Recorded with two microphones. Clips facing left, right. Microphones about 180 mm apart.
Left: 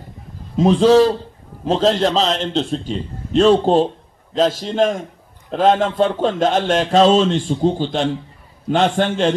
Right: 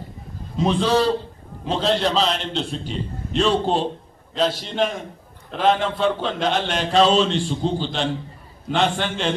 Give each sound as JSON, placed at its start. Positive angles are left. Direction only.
{"t": 0.7, "sound": "a man's voice", "side_deg": 45}